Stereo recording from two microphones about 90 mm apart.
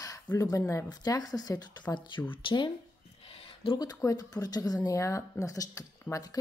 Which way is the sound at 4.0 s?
40° left (ahead or behind).